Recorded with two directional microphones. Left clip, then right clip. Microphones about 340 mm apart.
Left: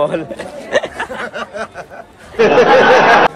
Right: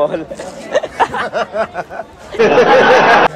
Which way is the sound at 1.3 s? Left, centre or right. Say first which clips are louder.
Right 7 dB; centre.